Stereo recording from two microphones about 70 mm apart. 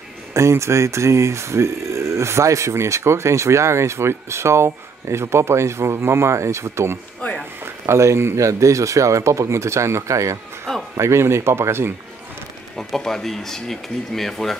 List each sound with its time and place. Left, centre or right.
0.3 s speech: right
7.2 s a sound: centre
7.8 s a man's voice: right
12.7 s speech: centre